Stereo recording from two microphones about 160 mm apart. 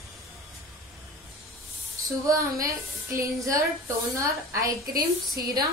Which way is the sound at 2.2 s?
20° right (ahead or behind).